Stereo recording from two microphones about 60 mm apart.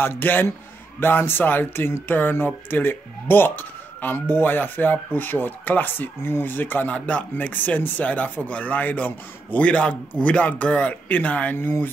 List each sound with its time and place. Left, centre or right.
0.0 s a man's voice: left
6.9 s a man's voice: left